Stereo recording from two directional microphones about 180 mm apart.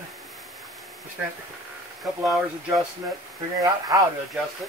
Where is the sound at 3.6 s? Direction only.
20° right (ahead or behind).